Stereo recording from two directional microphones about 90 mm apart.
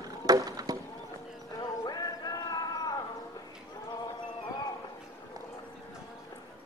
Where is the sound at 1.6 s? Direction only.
50° left (ahead or behind).